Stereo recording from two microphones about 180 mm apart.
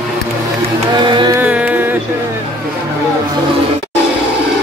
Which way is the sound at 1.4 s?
5° right (ahead or behind).